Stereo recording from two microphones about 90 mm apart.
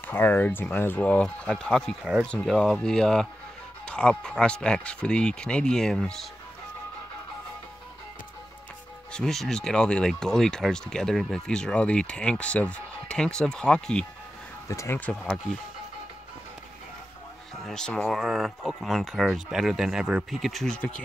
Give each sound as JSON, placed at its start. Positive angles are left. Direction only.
{"t": 0.0, "sound": "speech", "side_deg": 20}
{"t": 9.1, "sound": "speech", "side_deg": 5}
{"t": 14.7, "sound": "speech", "side_deg": 35}
{"t": 15.0, "sound": "speech", "side_deg": 15}
{"t": 17.6, "sound": "speech", "side_deg": 10}
{"t": 18.2, "sound": "speech", "side_deg": -5}